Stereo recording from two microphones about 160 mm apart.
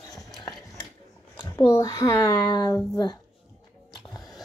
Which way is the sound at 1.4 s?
20° left (ahead or behind).